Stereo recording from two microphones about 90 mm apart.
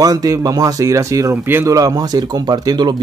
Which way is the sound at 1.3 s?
25° right (ahead or behind).